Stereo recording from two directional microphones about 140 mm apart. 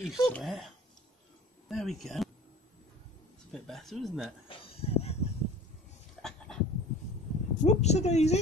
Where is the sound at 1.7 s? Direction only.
Centre (ahead or behind).